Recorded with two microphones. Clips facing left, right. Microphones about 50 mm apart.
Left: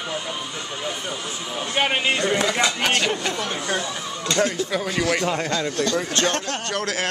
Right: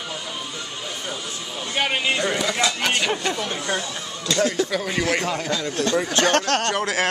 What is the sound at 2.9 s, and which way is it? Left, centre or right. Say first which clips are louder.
Speech: left 1 dB; centre.